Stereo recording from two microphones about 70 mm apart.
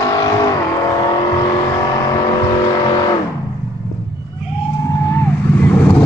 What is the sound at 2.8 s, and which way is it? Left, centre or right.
Vehicle, left.